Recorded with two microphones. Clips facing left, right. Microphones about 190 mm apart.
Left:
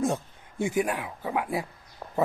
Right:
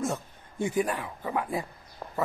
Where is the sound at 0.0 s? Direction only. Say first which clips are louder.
Left 4 dB; 10° left (ahead or behind).